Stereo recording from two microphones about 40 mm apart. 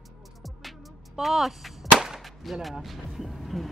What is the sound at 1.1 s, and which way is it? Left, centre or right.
Speech, centre.